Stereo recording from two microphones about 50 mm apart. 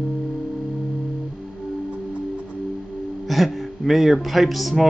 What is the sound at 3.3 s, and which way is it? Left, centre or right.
Speech, centre.